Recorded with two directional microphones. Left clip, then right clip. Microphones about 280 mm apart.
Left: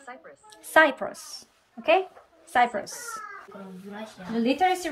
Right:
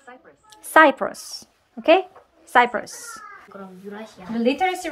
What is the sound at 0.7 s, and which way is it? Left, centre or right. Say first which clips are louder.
A woman's voice: right 5 dB; centre.